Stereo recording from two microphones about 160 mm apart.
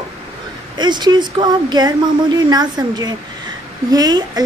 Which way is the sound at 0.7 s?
25° right (ahead or behind).